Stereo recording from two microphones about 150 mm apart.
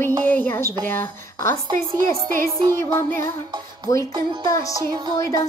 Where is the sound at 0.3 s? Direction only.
15° left (ahead or behind).